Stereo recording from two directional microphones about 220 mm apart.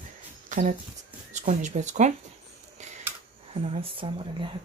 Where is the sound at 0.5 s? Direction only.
35° right (ahead or behind).